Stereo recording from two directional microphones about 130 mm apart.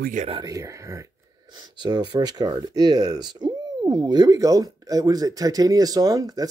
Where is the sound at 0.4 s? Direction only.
25° right (ahead or behind).